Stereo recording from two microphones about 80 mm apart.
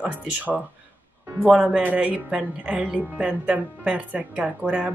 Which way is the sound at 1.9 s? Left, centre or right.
Centre.